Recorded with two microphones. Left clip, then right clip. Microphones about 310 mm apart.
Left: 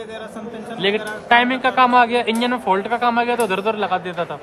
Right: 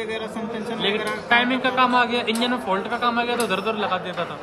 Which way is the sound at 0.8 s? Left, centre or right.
Left.